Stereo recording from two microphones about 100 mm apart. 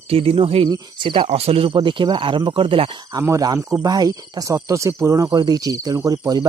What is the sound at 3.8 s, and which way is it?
Speech, 40° right (ahead or behind).